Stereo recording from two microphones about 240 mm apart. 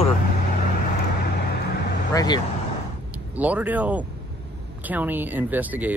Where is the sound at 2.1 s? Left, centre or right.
Centre.